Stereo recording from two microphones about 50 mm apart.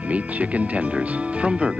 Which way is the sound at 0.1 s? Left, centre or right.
Right.